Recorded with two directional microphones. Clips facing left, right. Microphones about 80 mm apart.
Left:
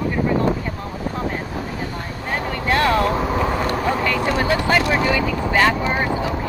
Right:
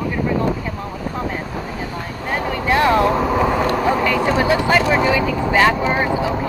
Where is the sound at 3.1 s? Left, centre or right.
Centre.